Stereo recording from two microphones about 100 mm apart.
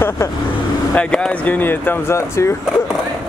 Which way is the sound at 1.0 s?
10° left (ahead or behind).